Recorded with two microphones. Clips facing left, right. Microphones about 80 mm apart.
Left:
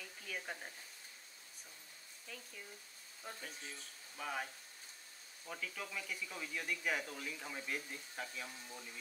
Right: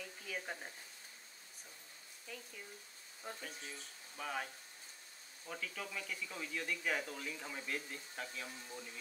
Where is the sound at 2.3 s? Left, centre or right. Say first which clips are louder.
Right 2 dB; centre.